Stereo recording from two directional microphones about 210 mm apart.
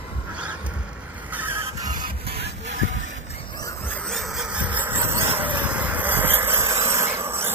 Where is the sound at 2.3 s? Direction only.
55° right (ahead or behind).